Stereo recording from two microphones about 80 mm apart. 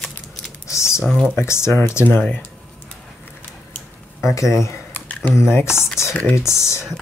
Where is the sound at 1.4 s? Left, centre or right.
Left.